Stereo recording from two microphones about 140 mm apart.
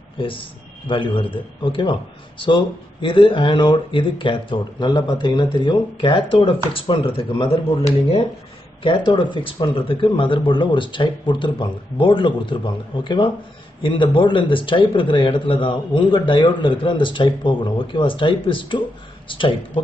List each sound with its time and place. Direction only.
0.2 s a man's voice: 40° left (ahead or behind)
8.8 s a man's voice: 35° left (ahead or behind)